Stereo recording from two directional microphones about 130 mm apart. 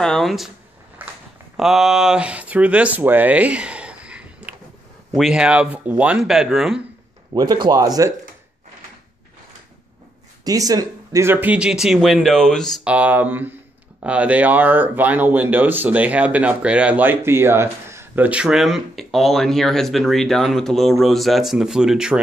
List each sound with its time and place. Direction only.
0.0 s speech: 5° left (ahead or behind)
1.0 s a sound: 15° right (ahead or behind)
1.6 s speech: 5° right (ahead or behind)
7.3 s speech: 35° right (ahead or behind)
10.4 s speech: 25° right (ahead or behind); by 12.8 s 5° left (ahead or behind)
12.8 s speech: 10° right (ahead or behind)